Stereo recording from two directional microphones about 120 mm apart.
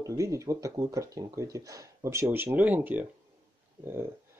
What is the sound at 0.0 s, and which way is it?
Speech, 25° right (ahead or behind).